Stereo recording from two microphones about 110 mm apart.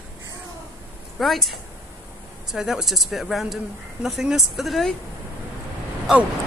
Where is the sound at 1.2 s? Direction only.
Centre (ahead or behind).